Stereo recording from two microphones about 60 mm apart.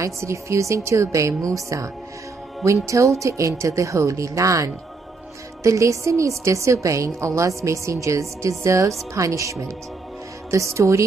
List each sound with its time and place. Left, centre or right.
0.0 s a woman's voice: right
2.9 s a woman's voice: right